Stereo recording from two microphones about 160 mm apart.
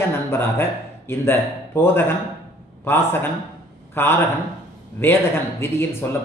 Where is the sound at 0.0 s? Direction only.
15° left (ahead or behind).